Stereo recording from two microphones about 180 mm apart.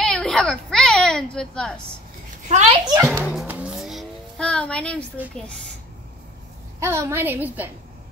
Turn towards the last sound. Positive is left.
turn(degrees=-10)  # may be behind; listen again after turning